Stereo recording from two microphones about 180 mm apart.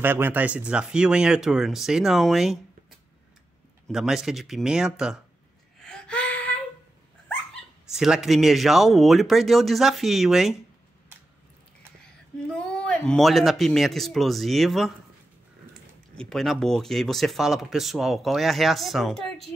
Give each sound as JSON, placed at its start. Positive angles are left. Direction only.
{"t": 0.0, "sound": "speech", "side_deg": -10}
{"t": 3.8, "sound": "speech", "side_deg": 0}
{"t": 5.8, "sound": "a sound", "side_deg": 5}
{"t": 7.9, "sound": "speech", "side_deg": -5}
{"t": 12.5, "sound": "speech", "side_deg": 5}
{"t": 16.2, "sound": "speech", "side_deg": 0}